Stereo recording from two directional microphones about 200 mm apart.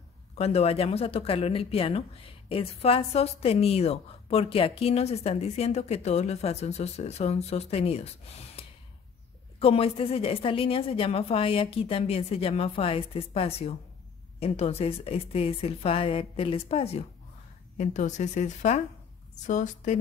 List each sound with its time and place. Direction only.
0.4 s a woman's voice: 30° left (ahead or behind)
8.6 s a sound: 30° left (ahead or behind)
9.6 s a woman's voice: 30° left (ahead or behind)